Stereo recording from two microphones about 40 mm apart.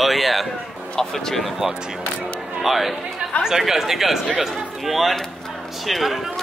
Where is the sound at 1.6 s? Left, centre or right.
Centre.